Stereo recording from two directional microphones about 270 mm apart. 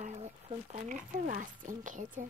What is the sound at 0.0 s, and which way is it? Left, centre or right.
Speech, right.